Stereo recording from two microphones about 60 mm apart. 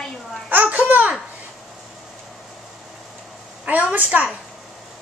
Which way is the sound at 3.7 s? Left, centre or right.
Right.